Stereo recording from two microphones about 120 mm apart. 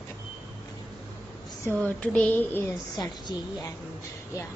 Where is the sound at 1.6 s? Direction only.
10° left (ahead or behind).